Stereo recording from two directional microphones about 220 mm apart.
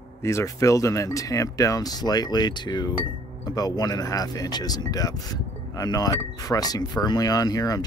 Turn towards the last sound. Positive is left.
turn(degrees=15)  # may be behind; listen again after turning